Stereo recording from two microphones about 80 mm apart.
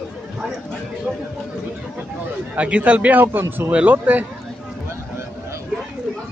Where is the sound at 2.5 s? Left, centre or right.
Centre.